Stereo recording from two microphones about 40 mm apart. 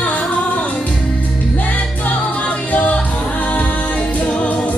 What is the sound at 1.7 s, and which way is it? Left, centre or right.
Music, left.